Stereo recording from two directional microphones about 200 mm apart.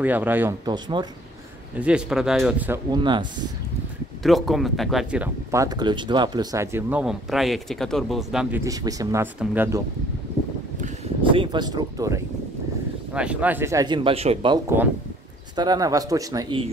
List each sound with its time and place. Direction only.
0.0 s speech: 10° right (ahead or behind)
0.7 s a man's voice: 20° right (ahead or behind)
1.8 s speech: 5° right (ahead or behind)
2.9 s a man's voice: 25° right (ahead or behind)
4.2 s speech: centre (ahead or behind)
11.2 s a man's voice: 25° right (ahead or behind)
13.1 s a man's voice: 5° right (ahead or behind)